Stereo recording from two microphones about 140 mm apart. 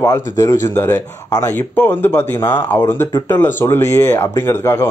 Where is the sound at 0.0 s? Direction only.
20° left (ahead or behind).